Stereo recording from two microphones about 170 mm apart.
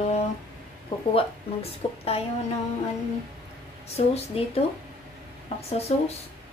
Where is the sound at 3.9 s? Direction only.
35° left (ahead or behind).